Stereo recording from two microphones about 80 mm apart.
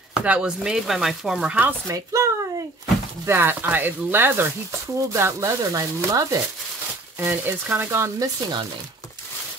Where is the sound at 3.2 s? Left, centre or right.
Right.